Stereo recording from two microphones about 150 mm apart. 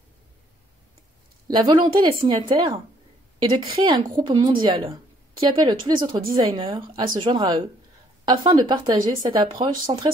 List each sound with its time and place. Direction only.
1.5 s speech: 30° right (ahead or behind)